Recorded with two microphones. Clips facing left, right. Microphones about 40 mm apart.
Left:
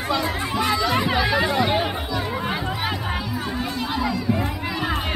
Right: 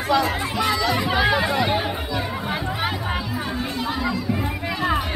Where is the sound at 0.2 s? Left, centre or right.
Centre.